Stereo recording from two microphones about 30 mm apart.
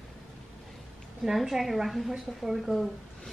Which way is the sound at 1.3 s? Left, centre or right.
Centre.